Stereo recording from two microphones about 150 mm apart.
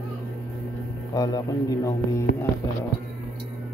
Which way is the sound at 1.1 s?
25° left (ahead or behind).